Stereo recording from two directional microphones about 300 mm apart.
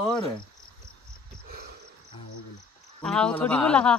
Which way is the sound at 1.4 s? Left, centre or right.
Right.